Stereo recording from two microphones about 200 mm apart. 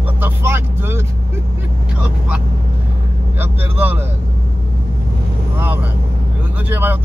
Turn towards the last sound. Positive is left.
turn(degrees=-10)  # may be behind; listen again after turning